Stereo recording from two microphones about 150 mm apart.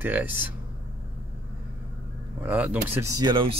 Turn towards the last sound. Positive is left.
turn(degrees=-30)  # may be behind; listen again after turning